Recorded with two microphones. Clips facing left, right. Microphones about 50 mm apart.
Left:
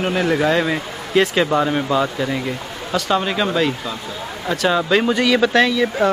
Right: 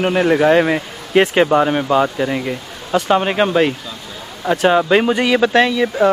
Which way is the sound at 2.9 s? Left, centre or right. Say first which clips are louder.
Right 4 dB; right.